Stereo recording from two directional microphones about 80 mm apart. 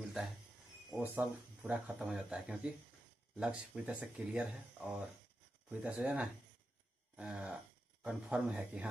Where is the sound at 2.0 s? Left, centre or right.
Centre.